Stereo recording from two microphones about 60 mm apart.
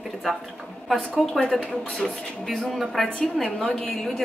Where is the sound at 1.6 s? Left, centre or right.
Centre.